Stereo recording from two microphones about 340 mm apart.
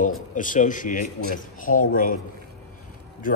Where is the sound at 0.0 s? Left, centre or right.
Left.